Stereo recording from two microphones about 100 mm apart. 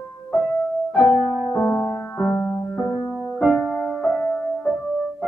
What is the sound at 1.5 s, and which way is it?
Music, 20° left (ahead or behind).